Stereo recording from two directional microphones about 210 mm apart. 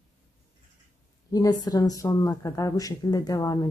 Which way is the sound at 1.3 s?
15° left (ahead or behind).